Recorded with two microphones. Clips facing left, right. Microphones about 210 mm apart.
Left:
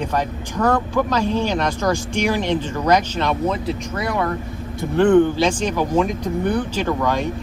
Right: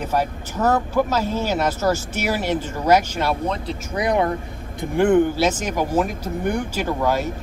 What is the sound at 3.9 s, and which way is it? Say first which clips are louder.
Speech: right 5 dB; 20° right (ahead or behind).